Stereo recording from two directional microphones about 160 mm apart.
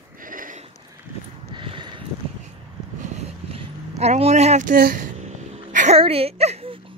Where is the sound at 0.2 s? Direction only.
60° right (ahead or behind).